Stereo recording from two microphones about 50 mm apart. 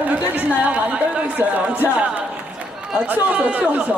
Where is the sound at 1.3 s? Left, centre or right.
Right.